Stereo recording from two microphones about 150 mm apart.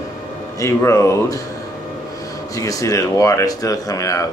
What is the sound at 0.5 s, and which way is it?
Speech, 20° left (ahead or behind).